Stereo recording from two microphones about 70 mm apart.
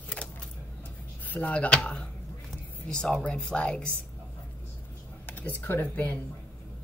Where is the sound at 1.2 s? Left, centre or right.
Left.